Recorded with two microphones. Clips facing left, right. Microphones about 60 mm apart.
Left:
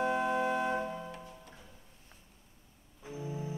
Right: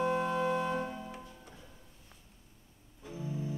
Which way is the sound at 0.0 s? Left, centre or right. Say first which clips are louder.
Even; centre.